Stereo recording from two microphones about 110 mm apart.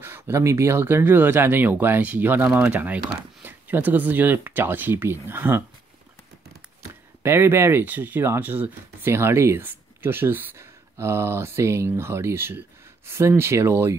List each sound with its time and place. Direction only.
0.0 s speech: 25° right (ahead or behind)
7.2 s speech: 20° right (ahead or behind)